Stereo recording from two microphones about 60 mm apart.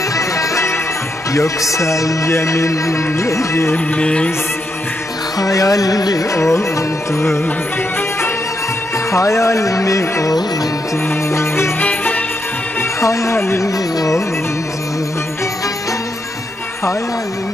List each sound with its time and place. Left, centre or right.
0.1 s music: left
3.7 s music: left
5.4 s music: left
9.1 s music: left
11.1 s music: left
11.8 s music: left
13.0 s music: left
13.9 s music: left